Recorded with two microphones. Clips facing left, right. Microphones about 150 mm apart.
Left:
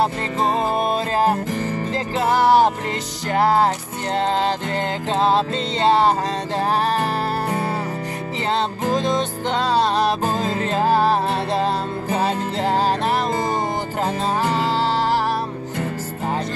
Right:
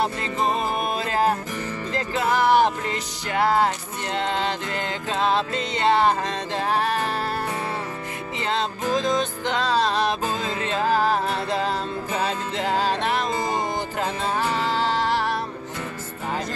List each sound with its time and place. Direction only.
0.0 s music: 35° left (ahead or behind)
9.5 s music: 35° left (ahead or behind)